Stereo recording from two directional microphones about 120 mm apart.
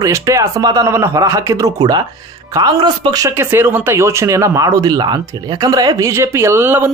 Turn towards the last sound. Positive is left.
turn(degrees=-20)  # may be behind; listen again after turning